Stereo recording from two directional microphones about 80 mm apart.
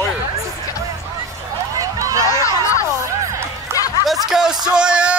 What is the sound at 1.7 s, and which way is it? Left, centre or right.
Run, right.